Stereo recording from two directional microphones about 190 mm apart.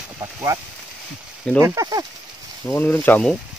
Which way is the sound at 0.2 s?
15° right (ahead or behind).